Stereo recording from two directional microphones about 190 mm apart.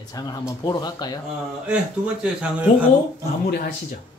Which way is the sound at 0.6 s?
20° left (ahead or behind).